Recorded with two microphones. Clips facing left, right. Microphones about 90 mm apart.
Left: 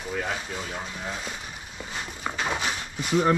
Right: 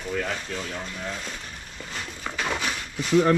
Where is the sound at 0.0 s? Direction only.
10° left (ahead or behind).